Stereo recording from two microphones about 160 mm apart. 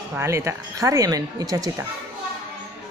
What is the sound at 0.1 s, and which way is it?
Speech, 15° right (ahead or behind).